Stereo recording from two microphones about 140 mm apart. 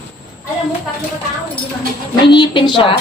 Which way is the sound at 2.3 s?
35° left (ahead or behind).